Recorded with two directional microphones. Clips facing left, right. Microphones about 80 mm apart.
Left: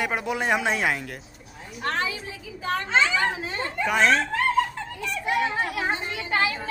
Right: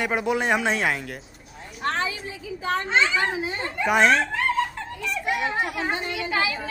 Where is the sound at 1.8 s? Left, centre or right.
Right.